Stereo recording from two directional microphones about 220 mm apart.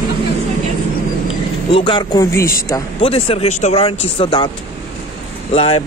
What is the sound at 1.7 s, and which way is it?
Speech, 25° left (ahead or behind).